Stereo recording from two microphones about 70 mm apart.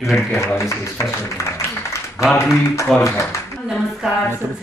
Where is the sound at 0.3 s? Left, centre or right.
Left.